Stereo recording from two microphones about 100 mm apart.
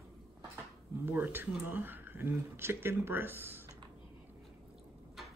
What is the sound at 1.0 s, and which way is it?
Speech, 20° right (ahead or behind).